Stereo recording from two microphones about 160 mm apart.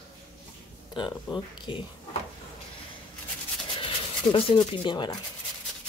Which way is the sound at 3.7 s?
35° left (ahead or behind).